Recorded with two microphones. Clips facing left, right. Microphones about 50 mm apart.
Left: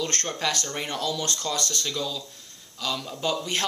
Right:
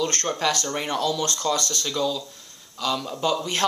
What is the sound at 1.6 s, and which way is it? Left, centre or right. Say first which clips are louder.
Speech: right 1 dB; centre.